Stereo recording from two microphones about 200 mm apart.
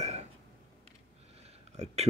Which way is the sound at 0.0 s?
35° right (ahead or behind).